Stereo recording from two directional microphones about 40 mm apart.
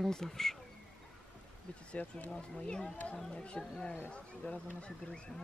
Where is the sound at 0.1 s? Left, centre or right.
Centre.